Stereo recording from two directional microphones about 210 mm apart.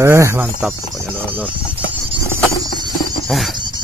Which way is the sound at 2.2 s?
20° right (ahead or behind).